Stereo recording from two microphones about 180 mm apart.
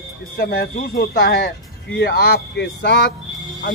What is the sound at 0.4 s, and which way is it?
Speech, 55° left (ahead or behind).